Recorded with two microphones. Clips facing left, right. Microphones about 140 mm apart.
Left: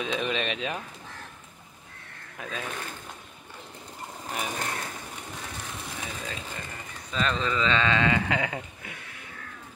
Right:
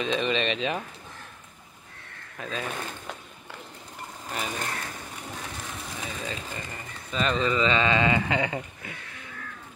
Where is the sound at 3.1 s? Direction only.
90° right.